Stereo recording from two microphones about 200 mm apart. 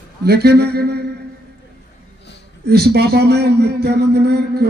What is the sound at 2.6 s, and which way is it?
A man's voice, 55° right (ahead or behind).